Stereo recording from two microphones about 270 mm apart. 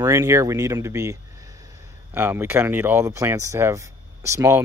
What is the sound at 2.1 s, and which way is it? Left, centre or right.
Speech, centre.